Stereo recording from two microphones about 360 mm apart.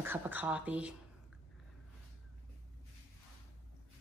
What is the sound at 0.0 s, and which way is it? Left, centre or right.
Speech, centre.